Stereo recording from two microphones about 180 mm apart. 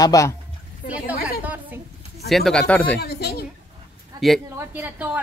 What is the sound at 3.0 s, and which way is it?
Speech, 60° left (ahead or behind).